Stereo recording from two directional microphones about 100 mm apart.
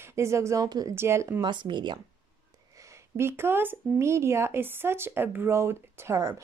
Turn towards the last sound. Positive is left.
turn(degrees=-30)  # may be behind; listen again after turning